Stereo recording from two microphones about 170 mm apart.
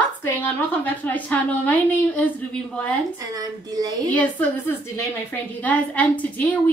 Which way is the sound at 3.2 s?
20° right (ahead or behind).